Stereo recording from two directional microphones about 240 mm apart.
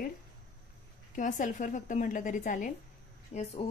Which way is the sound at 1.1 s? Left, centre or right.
Left.